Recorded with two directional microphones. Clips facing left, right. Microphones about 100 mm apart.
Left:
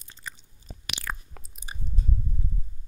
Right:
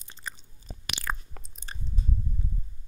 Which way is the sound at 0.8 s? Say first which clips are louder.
Right 2 dB; 30° right (ahead or behind).